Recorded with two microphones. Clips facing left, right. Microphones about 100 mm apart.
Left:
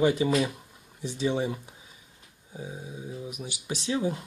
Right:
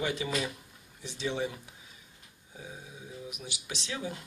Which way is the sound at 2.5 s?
25° left (ahead or behind).